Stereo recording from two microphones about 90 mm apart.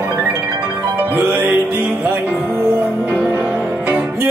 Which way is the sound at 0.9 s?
20° right (ahead or behind).